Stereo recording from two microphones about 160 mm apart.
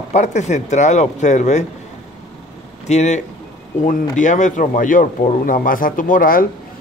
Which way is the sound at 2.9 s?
45° left (ahead or behind).